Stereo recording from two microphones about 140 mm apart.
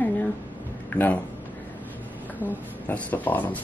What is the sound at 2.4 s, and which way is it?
A woman's voice, 10° left (ahead or behind).